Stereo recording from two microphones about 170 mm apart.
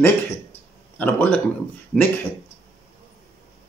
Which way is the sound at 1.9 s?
5° right (ahead or behind).